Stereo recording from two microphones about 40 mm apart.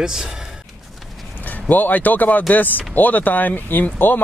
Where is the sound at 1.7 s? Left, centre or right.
Left.